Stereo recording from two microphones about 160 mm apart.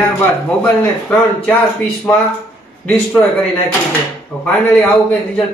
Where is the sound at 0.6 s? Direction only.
10° left (ahead or behind).